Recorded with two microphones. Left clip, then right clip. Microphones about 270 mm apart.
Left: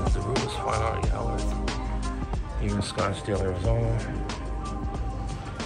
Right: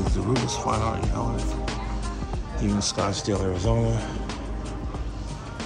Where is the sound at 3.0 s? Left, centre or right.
Right.